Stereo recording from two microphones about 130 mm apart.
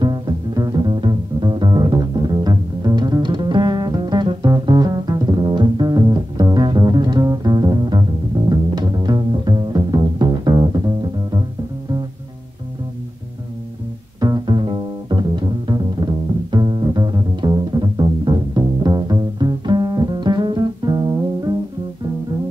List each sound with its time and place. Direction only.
0.0 s music: 30° right (ahead or behind)
14.2 s music: 35° right (ahead or behind)